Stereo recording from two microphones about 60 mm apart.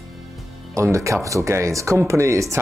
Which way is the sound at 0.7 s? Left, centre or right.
Right.